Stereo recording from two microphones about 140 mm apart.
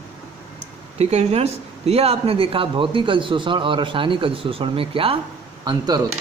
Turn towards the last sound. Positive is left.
turn(degrees=-25)  # may be behind; listen again after turning